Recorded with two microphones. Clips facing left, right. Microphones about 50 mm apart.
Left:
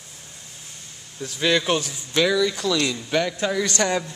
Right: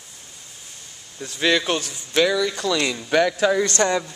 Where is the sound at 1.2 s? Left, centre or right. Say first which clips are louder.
Right 1 dB; centre.